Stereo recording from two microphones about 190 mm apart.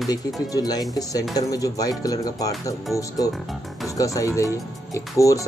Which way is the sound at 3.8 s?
20° left (ahead or behind).